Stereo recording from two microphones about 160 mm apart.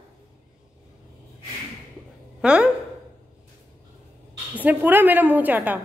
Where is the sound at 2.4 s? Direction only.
5° right (ahead or behind).